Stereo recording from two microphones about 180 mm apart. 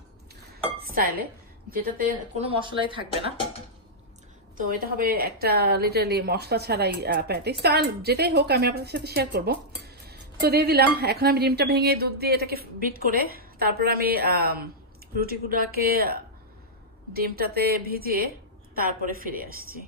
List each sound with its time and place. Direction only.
0.7 s dishes: 55° right (ahead or behind)
1.7 s a woman's voice: 55° right (ahead or behind)
2.3 s speech: 30° right (ahead or behind)
4.6 s a woman's voice: 50° right (ahead or behind)